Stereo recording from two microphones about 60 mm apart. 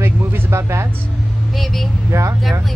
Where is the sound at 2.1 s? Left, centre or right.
Right.